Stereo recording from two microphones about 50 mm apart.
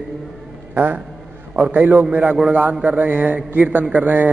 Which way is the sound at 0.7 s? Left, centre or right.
Right.